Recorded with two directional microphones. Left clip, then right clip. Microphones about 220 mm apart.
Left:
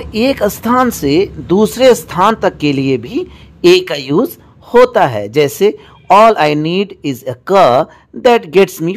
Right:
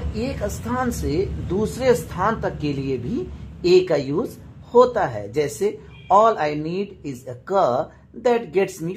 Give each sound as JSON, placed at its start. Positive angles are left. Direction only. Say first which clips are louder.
{"t": 0.1, "sound": "speech", "louder": "left 15 dB", "side_deg": 35}